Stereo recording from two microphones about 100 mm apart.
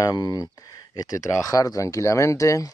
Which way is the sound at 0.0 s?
40° left (ahead or behind).